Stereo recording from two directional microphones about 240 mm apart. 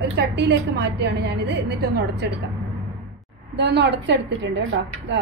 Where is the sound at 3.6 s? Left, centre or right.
Right.